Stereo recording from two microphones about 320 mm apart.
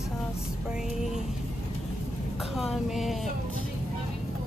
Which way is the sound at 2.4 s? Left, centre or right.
Centre.